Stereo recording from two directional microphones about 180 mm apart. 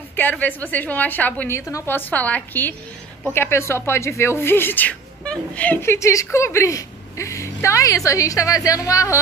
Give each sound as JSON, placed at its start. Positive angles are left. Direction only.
{"t": 0.1, "sound": "speech", "side_deg": 10}